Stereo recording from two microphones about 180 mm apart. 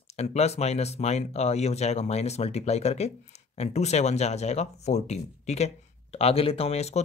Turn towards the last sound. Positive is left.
turn(degrees=35)  # may be behind; listen again after turning